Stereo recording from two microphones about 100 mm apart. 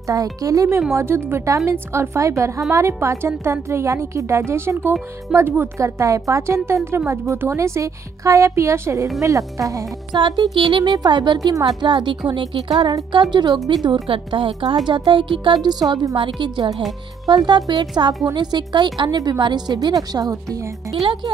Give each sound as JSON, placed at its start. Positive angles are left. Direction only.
{"t": 0.0, "sound": "a woman's voice", "side_deg": -35}
{"t": 0.9, "sound": "a woman's voice", "side_deg": -25}
{"t": 10.1, "sound": "speech", "side_deg": -50}
{"t": 11.9, "sound": "a woman's voice", "side_deg": -55}
{"t": 14.0, "sound": "a woman's voice", "side_deg": -65}
{"t": 21.0, "sound": "a woman's voice", "side_deg": -55}